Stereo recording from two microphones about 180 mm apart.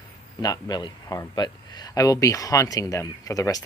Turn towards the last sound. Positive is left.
turn(degrees=20)  # may be behind; listen again after turning